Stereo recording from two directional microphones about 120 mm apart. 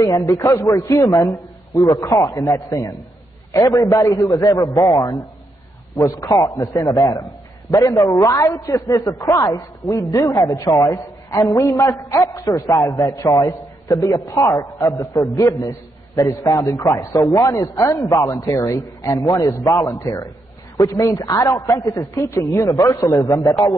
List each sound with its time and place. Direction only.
0.0 s a man's voice: 30° left (ahead or behind)